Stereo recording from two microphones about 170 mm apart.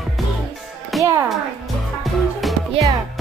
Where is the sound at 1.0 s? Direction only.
15° right (ahead or behind).